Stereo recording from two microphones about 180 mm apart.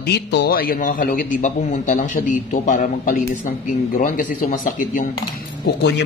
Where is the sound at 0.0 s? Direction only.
65° left (ahead or behind); by 5.0 s 45° left (ahead or behind).